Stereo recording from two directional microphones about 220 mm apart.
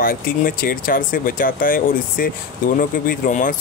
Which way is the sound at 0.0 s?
40° left (ahead or behind).